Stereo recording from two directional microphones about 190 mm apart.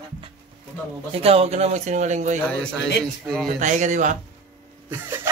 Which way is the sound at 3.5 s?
40° right (ahead or behind).